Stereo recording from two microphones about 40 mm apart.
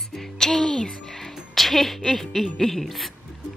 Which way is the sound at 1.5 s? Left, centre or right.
Centre.